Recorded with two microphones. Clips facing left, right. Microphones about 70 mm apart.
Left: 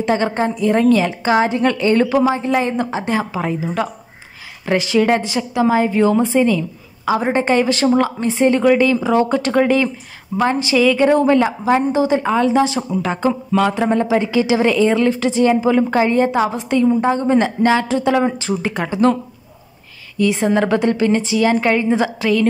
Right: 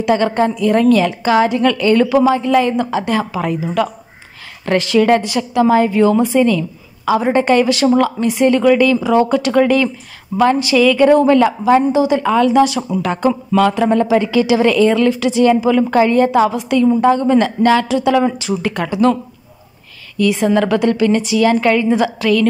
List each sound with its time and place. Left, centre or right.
0.0 s a woman's voice: left
18.7 s a woman's voice: left
20.2 s a woman's voice: left